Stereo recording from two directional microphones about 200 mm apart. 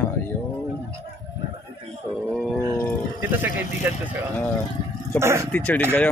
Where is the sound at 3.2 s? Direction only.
10° right (ahead or behind).